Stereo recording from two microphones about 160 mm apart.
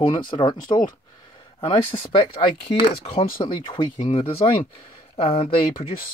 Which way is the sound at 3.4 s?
30° left (ahead or behind).